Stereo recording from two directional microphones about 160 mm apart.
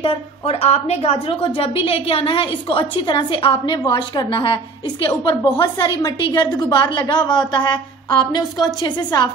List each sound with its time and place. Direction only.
0.0 s a woman's voice: 35° left (ahead or behind)